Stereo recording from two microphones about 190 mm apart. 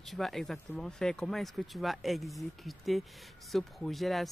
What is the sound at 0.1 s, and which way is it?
Speech, centre (ahead or behind).